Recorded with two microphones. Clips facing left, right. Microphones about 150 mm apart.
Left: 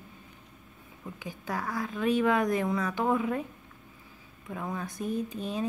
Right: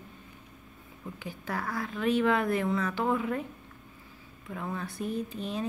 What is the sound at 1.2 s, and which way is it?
A woman's voice, 15° left (ahead or behind).